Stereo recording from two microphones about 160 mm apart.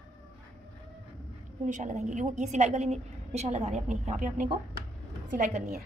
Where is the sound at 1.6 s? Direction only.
50° right (ahead or behind); by 5.8 s 65° right (ahead or behind).